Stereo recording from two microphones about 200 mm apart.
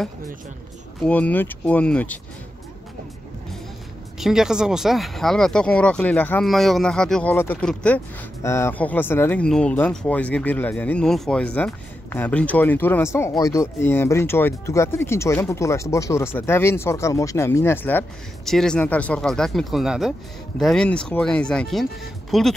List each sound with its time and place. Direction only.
1.0 s speech: 5° left (ahead or behind)
4.2 s speech: centre (ahead or behind)